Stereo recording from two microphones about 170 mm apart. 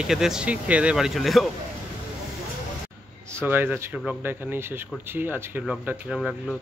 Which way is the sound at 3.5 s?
10° right (ahead or behind).